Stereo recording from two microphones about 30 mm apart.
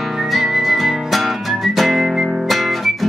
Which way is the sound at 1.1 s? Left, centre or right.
Centre.